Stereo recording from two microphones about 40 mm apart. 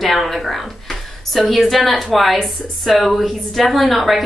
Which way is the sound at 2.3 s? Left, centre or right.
Centre.